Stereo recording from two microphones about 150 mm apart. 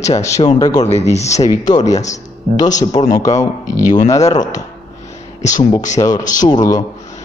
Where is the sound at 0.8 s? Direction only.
45° left (ahead or behind).